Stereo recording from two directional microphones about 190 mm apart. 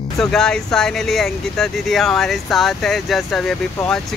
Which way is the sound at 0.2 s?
5° left (ahead or behind).